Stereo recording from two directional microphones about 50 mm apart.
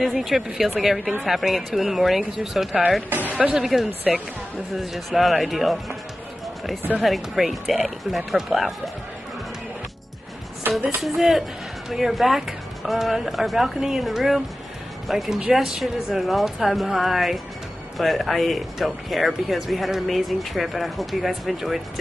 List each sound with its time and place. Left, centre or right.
0.0 s speech: centre
3.3 s speech: right
3.6 s speech: centre
7.0 s speech: centre
10.6 s speech: right
11.0 s speech: centre